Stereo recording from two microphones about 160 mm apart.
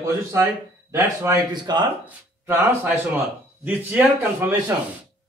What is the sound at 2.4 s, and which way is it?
Speech, 15° right (ahead or behind).